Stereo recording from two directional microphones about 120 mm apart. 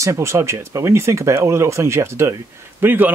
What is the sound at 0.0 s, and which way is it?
Speech, 25° right (ahead or behind).